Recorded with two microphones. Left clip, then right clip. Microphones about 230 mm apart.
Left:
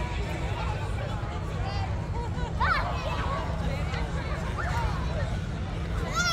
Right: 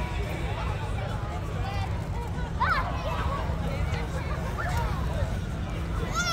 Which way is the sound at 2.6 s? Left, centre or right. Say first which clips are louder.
Even; centre.